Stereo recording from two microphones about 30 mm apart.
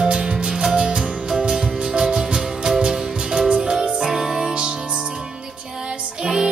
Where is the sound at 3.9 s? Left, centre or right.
Centre.